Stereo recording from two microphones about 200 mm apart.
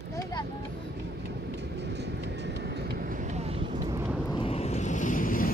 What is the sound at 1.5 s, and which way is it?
Train, 60° right (ahead or behind).